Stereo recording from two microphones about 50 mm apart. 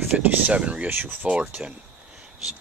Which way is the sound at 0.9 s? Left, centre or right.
Right.